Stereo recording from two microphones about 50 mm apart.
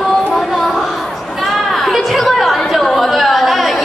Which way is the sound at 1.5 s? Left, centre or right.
Centre.